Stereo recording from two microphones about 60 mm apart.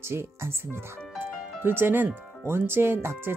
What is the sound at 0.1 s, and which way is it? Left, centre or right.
Speech, right.